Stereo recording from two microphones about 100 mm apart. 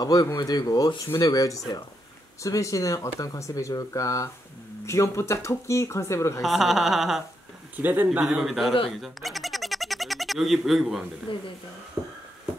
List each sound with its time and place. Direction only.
0.0 s speech: 40° left (ahead or behind)
6.4 s speech: centre (ahead or behind)
7.7 s speech: 20° right (ahead or behind)
8.2 s speech: 5° right (ahead or behind)
9.0 s cat: centre (ahead or behind)
11.3 s speech: 60° left (ahead or behind)